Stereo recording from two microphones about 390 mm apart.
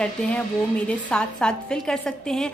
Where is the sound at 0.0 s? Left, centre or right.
Centre.